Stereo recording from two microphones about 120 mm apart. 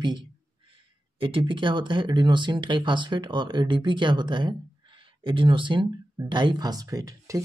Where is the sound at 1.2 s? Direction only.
45° right (ahead or behind).